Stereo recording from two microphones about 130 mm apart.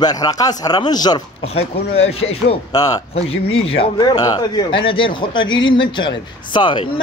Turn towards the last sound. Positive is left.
turn(degrees=35)  # may be behind; listen again after turning